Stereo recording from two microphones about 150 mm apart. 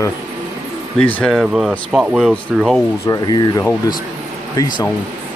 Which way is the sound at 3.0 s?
20° left (ahead or behind).